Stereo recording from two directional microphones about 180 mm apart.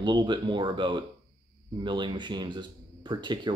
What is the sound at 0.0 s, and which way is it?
Speech, 25° right (ahead or behind).